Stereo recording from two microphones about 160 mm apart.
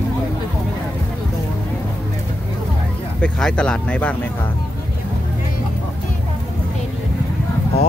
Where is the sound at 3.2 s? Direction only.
5° left (ahead or behind).